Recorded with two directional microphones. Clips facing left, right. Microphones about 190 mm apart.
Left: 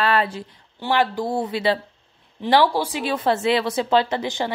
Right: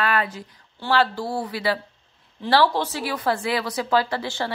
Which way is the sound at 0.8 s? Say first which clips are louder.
Left 1 dB; 15° left (ahead or behind).